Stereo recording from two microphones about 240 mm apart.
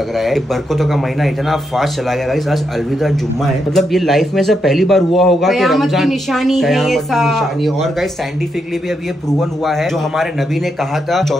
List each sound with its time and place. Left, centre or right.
0.2 s a man's voice: centre
3.7 s a man's voice: centre